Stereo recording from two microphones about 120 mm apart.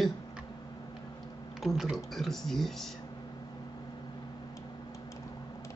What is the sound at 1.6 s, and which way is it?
Speech, centre (ahead or behind).